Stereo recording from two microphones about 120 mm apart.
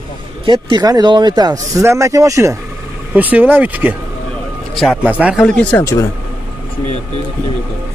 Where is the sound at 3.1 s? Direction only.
15° right (ahead or behind).